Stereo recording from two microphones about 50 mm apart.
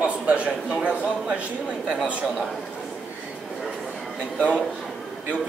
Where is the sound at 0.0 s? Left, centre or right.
Right.